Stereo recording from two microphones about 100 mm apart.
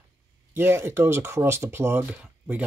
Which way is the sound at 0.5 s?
25° right (ahead or behind).